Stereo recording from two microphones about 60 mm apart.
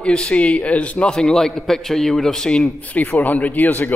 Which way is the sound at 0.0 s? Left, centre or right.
Centre.